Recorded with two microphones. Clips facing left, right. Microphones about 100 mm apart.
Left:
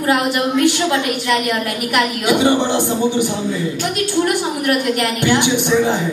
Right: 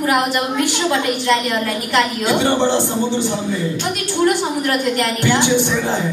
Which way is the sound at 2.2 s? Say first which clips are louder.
Left 4 dB; 15° left (ahead or behind).